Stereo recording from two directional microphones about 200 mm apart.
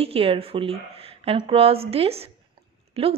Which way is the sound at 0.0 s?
30° right (ahead or behind).